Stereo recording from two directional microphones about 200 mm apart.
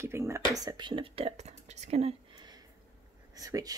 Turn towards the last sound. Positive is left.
turn(degrees=-20)  # may be behind; listen again after turning